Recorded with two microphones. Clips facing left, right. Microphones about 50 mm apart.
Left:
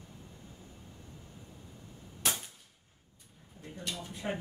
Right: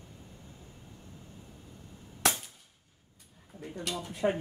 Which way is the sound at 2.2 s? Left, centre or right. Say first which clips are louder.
Right 5 dB; right.